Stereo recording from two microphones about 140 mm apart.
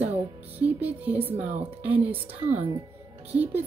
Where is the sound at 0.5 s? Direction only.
10° right (ahead or behind).